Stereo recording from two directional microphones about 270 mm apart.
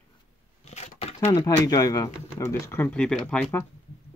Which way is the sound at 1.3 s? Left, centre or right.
Centre.